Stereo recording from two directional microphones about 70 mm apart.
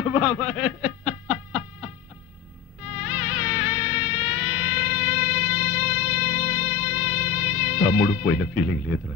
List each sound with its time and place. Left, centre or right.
0.0 s snicker: centre
2.9 s insect: centre